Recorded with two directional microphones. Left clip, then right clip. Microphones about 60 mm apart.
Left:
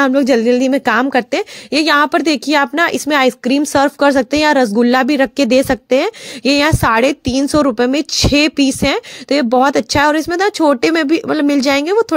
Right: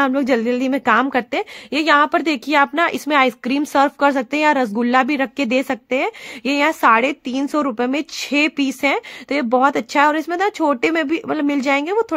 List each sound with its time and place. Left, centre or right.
0.0 s a woman's voice: left
7.9 s speech: left